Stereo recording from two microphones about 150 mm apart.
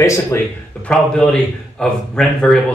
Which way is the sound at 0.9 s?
5° left (ahead or behind).